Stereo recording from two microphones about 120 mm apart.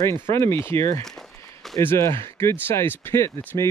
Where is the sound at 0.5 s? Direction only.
20° left (ahead or behind).